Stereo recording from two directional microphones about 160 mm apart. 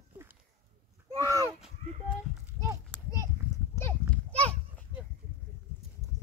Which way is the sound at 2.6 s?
20° right (ahead or behind).